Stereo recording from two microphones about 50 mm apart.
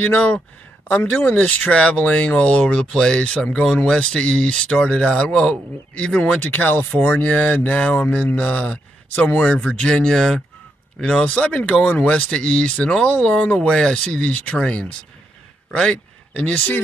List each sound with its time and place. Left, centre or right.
0.0 s speech: left
1.5 s speech: left
6.5 s speech: left; by 11.2 s centre
11.2 s speech: left
12.1 s speech: centre
13.7 s speech: centre
16.3 s speech: left